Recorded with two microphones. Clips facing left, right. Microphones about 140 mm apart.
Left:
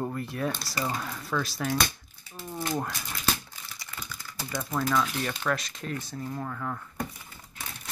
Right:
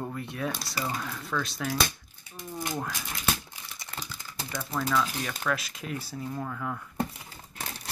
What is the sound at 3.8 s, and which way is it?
Typing, 30° right (ahead or behind).